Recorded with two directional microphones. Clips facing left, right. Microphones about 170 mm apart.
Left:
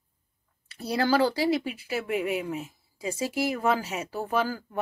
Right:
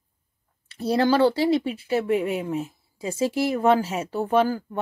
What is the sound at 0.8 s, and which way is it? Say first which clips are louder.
Speech: right 5 dB; 25° right (ahead or behind).